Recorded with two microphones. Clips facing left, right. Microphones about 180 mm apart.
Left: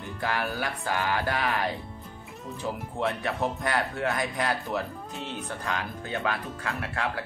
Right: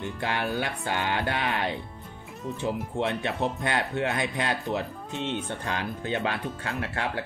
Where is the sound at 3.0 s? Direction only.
25° right (ahead or behind).